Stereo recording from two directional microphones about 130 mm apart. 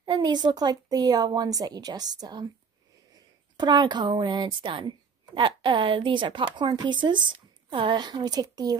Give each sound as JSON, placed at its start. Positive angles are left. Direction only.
{"t": 0.0, "sound": "a woman's voice", "side_deg": -30}
{"t": 3.5, "sound": "a woman's voice", "side_deg": -35}